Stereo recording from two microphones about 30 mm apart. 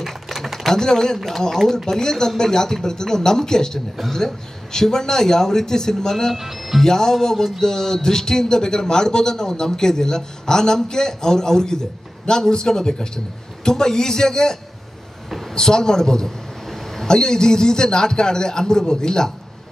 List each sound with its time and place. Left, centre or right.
0.7 s a man's voice: centre
6.3 s speech: centre
6.8 s a man's voice: centre
15.2 s a sound: centre
15.5 s a man's voice: left
16.3 s a sound: centre
17.1 s a man's voice: left